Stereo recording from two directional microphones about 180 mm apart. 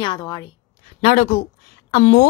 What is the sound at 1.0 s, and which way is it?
Speech, 40° left (ahead or behind).